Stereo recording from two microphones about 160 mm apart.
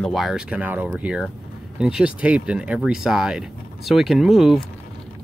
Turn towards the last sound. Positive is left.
turn(degrees=0)  # may be behind; listen again after turning